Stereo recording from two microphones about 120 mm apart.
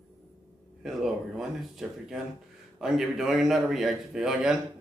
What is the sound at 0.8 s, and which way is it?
A man's voice, 5° right (ahead or behind).